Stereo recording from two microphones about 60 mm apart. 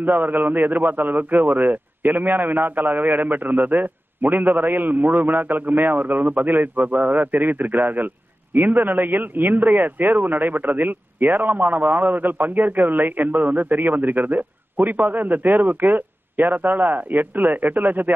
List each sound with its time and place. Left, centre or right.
0.0 s a man's voice: right